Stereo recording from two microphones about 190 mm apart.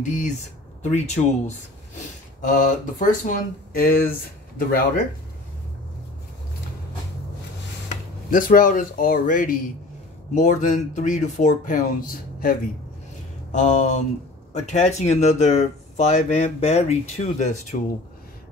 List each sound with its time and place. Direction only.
0.0 s speech: 40° left (ahead or behind)
2.4 s speech: 45° left (ahead or behind)
8.3 s speech: 45° left (ahead or behind)